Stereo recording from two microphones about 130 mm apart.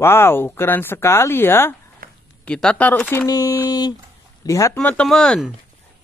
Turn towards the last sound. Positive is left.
turn(degrees=5)  # may be behind; listen again after turning